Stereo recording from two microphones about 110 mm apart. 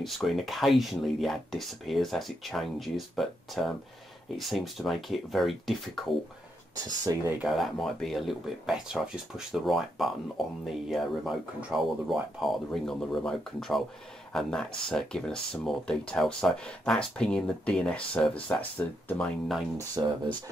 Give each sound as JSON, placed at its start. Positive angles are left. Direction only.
{"t": 0.0, "sound": "speech", "side_deg": 0}
{"t": 6.8, "sound": "speech", "side_deg": -30}
{"t": 7.4, "sound": "speech", "side_deg": 0}
{"t": 20.0, "sound": "speech", "side_deg": -30}